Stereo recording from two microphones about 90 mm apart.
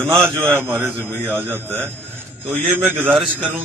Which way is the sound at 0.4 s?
25° right (ahead or behind).